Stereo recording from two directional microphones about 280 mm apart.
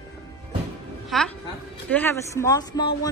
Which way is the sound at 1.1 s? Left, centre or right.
Centre.